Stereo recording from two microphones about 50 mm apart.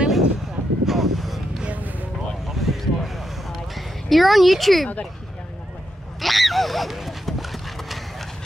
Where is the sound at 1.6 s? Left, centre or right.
Right.